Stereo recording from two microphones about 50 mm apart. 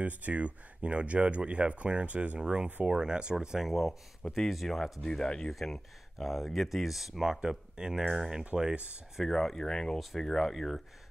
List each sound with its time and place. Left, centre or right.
0.0 s speech: right
3.3 s speech: centre
5.0 s speech: centre
5.5 s speech: centre
8.7 s speech: right
9.2 s speech: centre